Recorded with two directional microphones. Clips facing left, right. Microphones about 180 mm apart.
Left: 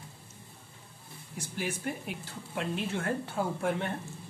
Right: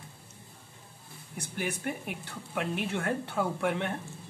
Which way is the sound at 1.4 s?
60° right (ahead or behind).